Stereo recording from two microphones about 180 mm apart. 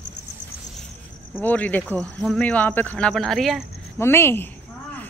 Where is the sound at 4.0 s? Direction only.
15° left (ahead or behind).